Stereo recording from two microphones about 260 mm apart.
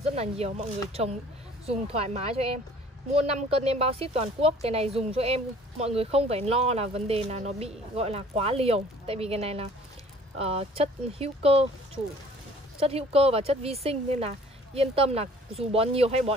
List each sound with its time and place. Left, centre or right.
0.1 s speech: right
1.7 s speech: right